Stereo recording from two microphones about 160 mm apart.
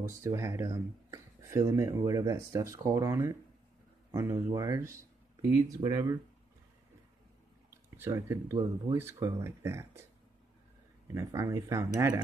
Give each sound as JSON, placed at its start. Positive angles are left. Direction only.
{"t": 0.2, "sound": "speech", "side_deg": -20}
{"t": 7.7, "sound": "speech", "side_deg": -15}
{"t": 11.1, "sound": "speech", "side_deg": -20}